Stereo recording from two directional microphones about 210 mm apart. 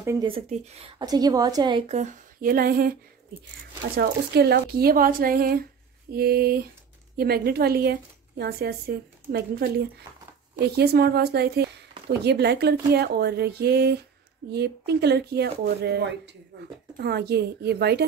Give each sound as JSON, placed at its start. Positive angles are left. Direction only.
{"t": 0.0, "sound": "speech", "side_deg": -15}
{"t": 0.3, "sound": "a woman's voice", "side_deg": -30}
{"t": 3.9, "sound": "a woman's voice", "side_deg": -50}